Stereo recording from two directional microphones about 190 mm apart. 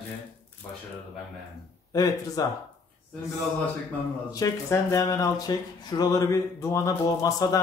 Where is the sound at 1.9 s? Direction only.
20° left (ahead or behind).